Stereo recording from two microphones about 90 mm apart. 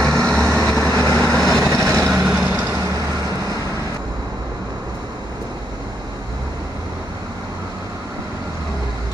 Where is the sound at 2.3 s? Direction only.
15° right (ahead or behind).